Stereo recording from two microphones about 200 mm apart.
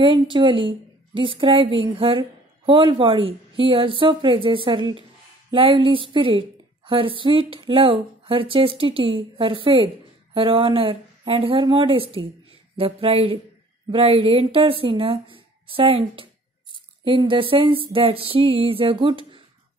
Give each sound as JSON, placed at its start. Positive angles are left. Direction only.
{"t": 0.0, "sound": "a woman's voice", "side_deg": -25}